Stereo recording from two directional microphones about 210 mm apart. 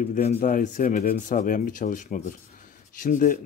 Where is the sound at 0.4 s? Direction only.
40° left (ahead or behind).